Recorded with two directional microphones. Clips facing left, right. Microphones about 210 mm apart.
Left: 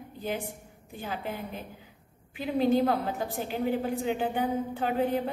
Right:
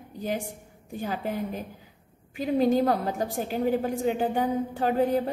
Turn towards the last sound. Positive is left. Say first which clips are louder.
# right 3 dB
turn(degrees=-40)  # may be behind; listen again after turning